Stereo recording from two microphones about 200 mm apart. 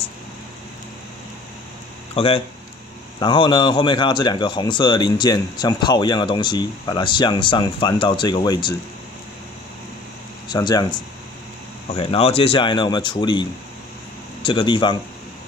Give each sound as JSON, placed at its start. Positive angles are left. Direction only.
{"t": 2.1, "sound": "speech", "side_deg": 25}
{"t": 10.5, "sound": "speech", "side_deg": 20}